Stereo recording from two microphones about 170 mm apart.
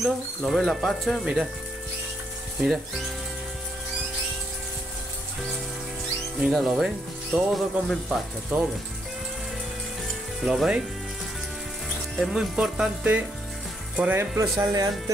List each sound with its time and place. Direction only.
0.0 s speech: centre (ahead or behind)
6.4 s speech: 5° right (ahead or behind)
10.4 s speech: centre (ahead or behind)
12.2 s speech: 5° right (ahead or behind); by 14.9 s 20° right (ahead or behind)